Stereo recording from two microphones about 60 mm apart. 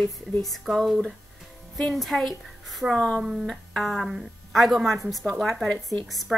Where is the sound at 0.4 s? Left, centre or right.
Centre.